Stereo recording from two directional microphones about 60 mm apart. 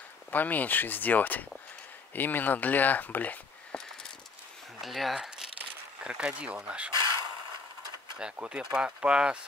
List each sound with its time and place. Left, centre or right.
0.3 s speech: left
3.7 s a sound: centre
4.8 s speech: centre
8.2 s speech: centre